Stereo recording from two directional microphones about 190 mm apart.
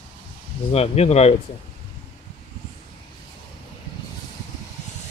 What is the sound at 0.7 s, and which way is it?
Speech, 35° left (ahead or behind).